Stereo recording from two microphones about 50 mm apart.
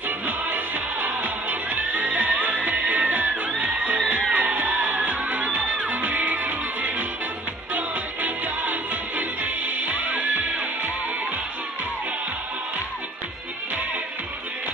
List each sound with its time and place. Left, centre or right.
1.0 s music: right